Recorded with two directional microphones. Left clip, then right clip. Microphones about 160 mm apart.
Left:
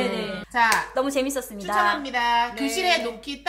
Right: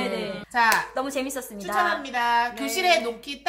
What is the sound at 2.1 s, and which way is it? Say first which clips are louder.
Speech: left 1 dB; 40° right (ahead or behind).